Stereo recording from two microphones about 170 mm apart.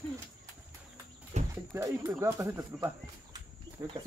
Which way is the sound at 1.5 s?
15° right (ahead or behind).